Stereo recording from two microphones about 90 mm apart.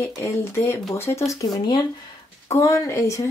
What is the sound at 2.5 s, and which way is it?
Speech, 35° left (ahead or behind).